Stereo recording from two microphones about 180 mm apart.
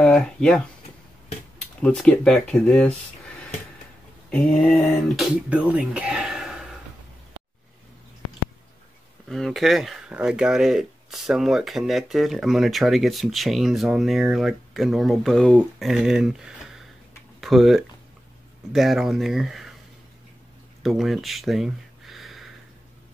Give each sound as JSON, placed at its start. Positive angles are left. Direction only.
{"t": 0.0, "sound": "speech", "side_deg": 5}
{"t": 1.8, "sound": "speech", "side_deg": 5}
{"t": 4.3, "sound": "speech", "side_deg": 5}
{"t": 9.3, "sound": "speech", "side_deg": 0}
{"t": 20.8, "sound": "a sound", "side_deg": 0}